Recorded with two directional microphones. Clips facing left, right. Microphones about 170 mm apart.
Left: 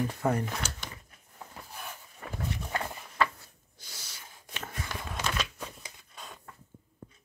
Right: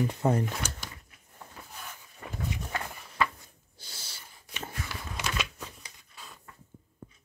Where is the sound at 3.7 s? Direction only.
30° right (ahead or behind).